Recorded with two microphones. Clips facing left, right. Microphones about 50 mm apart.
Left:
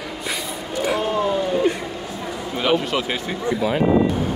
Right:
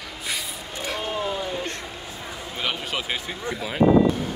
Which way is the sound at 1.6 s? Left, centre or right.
Centre.